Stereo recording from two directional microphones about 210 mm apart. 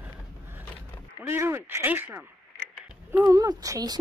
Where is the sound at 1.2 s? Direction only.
10° right (ahead or behind).